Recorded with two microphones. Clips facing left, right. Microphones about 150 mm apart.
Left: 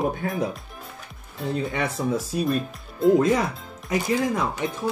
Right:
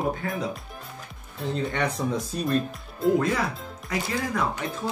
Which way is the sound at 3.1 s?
20° left (ahead or behind).